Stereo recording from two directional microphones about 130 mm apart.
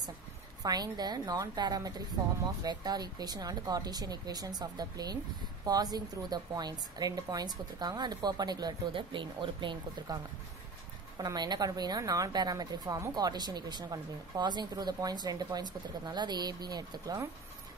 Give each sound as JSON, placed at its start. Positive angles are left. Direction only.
{"t": 0.6, "sound": "a woman's voice", "side_deg": -30}
{"t": 11.1, "sound": "a woman's voice", "side_deg": -35}